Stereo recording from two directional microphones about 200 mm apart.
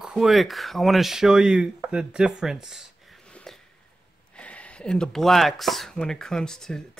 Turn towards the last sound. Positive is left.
turn(degrees=5)  # may be behind; listen again after turning